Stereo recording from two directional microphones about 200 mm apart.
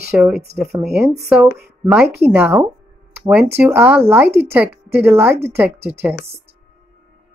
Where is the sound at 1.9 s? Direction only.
10° right (ahead or behind).